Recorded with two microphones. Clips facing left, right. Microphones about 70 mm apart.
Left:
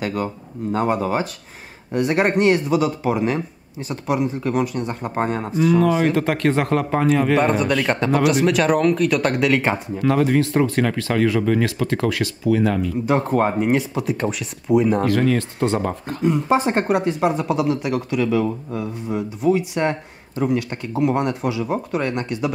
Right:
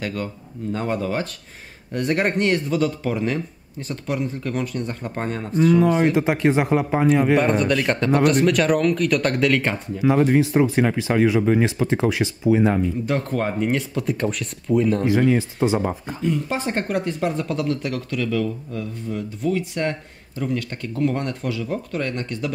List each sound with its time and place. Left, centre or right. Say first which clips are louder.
0.0 s speech: left 4 dB; centre
6.1 s speech: even; centre
7.3 s speech: left 1 dB; centre
9.9 s speech: right 2 dB; centre
13.0 s speech: left 5 dB; centre
15.0 s speech: even; centre
16.2 s speech: left 7 dB; left